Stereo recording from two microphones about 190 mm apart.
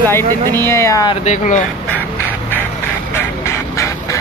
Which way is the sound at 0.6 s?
15° left (ahead or behind).